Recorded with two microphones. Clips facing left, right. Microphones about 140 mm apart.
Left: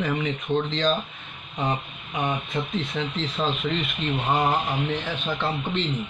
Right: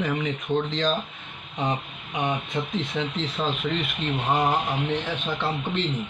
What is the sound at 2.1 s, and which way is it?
A man's voice, 15° right (ahead or behind).